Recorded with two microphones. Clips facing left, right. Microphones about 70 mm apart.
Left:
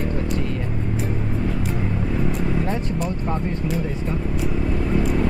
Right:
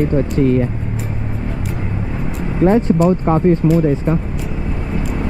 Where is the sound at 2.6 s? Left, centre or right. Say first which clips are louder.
Right 13 dB; right.